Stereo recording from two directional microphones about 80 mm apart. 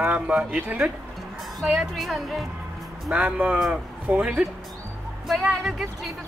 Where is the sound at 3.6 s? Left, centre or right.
Centre.